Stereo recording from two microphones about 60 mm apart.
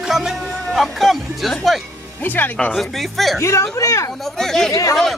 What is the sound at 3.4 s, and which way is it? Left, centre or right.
Speech, left.